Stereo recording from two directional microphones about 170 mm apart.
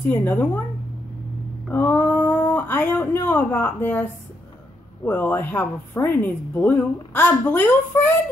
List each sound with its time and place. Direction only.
0.0 s speech: 10° left (ahead or behind)
1.7 s speech: 10° left (ahead or behind)